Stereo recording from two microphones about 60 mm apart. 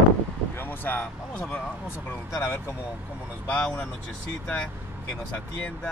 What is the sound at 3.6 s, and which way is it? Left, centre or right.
Speech, centre.